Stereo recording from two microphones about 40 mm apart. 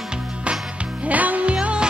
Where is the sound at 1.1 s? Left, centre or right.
Right.